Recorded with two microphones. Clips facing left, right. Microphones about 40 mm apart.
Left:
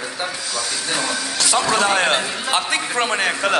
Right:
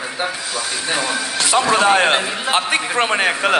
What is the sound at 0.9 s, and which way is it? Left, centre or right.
A man's voice, right.